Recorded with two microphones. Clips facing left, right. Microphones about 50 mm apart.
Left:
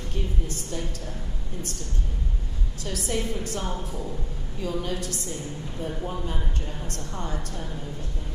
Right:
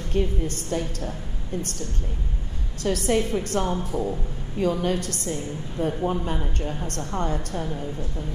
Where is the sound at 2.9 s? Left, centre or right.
Right.